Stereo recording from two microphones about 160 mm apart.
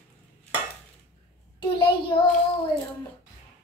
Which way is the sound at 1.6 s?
30° left (ahead or behind).